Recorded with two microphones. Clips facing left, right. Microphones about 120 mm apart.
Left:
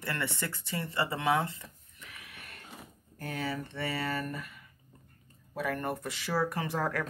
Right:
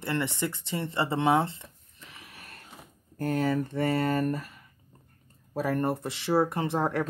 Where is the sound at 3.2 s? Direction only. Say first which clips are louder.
Right 9 dB; 45° right (ahead or behind); by 7.1 s 25° right (ahead or behind).